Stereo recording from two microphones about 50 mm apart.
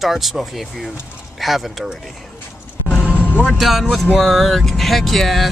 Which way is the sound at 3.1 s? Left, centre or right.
Left.